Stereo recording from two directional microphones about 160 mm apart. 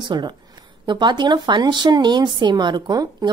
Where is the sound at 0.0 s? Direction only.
30° right (ahead or behind).